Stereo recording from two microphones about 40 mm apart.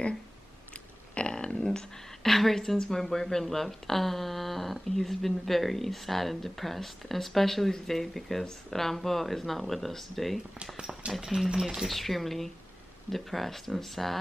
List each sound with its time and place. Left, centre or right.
1.3 s a sound: left
2.2 s a woman's voice: centre
11.1 s speech: centre
11.9 s a woman's voice: centre